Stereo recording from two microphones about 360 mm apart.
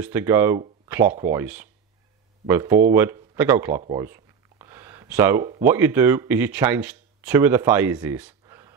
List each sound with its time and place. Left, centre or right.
0.0 s speech: centre